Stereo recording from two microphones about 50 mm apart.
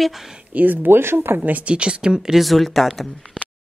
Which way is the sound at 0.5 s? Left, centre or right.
Right.